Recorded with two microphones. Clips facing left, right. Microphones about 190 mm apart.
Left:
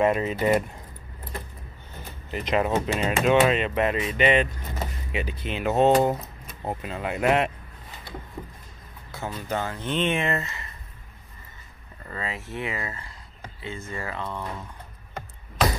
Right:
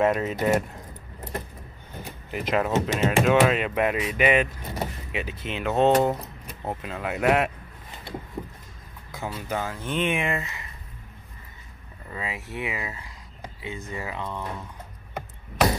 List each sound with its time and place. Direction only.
0.0 s speech: centre (ahead or behind)
2.0 s a sound: 10° right (ahead or behind)
2.5 s speech: centre (ahead or behind)
9.1 s speech: 10° right (ahead or behind)
12.1 s speech: 15° right (ahead or behind)